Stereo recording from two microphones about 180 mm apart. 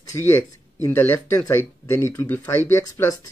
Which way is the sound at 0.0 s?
15° left (ahead or behind).